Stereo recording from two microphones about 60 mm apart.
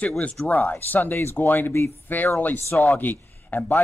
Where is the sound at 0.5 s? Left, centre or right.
Left.